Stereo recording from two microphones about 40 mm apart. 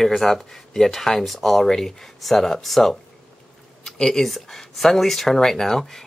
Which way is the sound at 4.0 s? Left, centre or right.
Centre.